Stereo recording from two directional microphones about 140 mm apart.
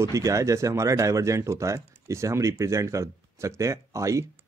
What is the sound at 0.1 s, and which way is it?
Speech, 20° right (ahead or behind).